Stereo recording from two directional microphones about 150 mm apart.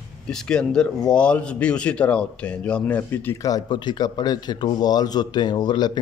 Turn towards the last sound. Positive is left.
turn(degrees=30)  # may be behind; listen again after turning